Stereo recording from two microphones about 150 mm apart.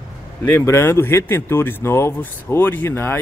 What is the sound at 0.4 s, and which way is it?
Speech, 15° left (ahead or behind).